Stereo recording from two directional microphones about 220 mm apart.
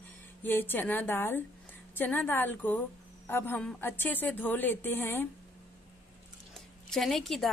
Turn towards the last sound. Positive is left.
turn(degrees=0)  # may be behind; listen again after turning